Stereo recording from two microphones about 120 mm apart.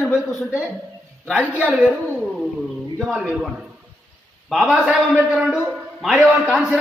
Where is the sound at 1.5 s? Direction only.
10° right (ahead or behind).